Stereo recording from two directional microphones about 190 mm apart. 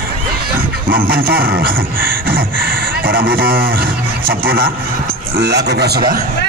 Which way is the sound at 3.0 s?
50° right (ahead or behind).